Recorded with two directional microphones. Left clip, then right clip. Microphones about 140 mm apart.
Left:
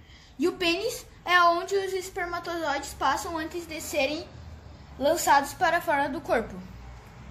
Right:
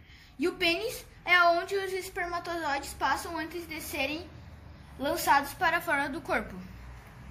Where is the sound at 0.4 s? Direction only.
35° left (ahead or behind).